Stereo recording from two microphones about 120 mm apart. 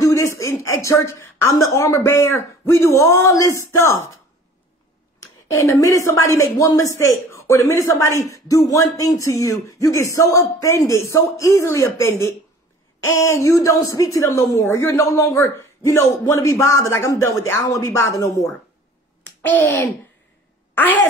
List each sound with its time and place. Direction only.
0.0 s a woman's voice: 25° left (ahead or behind)
5.2 s a woman's voice: 25° left (ahead or behind)
19.4 s a child's voice: 10° left (ahead or behind)